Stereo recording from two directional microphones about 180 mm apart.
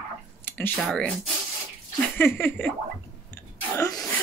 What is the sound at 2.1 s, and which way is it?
Speech, 10° left (ahead or behind).